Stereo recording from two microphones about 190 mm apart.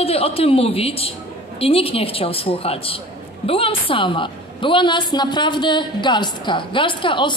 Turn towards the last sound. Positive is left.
turn(degrees=25)  # may be behind; listen again after turning